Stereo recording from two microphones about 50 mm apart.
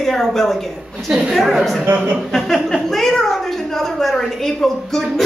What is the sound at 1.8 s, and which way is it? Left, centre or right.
Speech, right.